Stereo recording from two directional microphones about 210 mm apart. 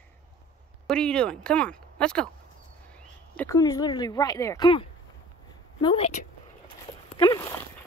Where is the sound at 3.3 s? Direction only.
10° left (ahead or behind).